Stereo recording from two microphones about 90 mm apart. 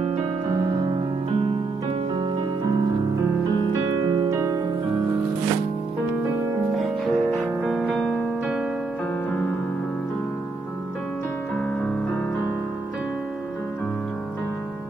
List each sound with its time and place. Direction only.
1.9 s music: 75° right (ahead or behind)
4.3 s music: 40° right (ahead or behind)
6.7 s music: centre (ahead or behind)